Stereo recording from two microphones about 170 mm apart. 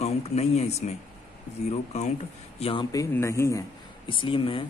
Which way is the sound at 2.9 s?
15° left (ahead or behind).